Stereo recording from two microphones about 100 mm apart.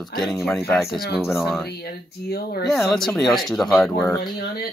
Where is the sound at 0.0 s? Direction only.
Centre (ahead or behind).